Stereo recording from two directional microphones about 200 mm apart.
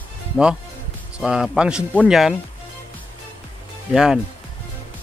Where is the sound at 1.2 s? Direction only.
Centre (ahead or behind).